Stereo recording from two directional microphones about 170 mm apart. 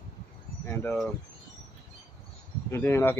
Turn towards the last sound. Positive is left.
turn(degrees=15)  # may be behind; listen again after turning